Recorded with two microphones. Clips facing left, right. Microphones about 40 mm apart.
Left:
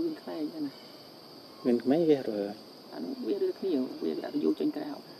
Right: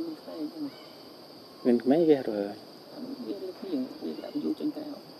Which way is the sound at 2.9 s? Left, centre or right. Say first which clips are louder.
Left 4 dB; left.